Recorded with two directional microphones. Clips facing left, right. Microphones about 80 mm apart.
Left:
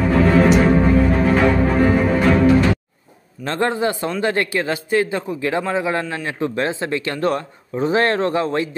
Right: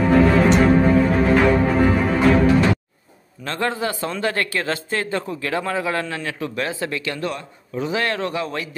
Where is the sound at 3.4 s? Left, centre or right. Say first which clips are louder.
Left 4 dB; left.